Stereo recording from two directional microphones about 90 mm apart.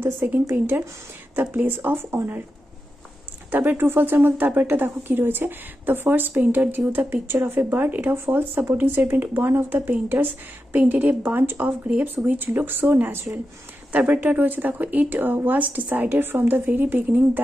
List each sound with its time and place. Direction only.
0.0 s speech: 25° right (ahead or behind)
3.5 s speech: 20° right (ahead or behind)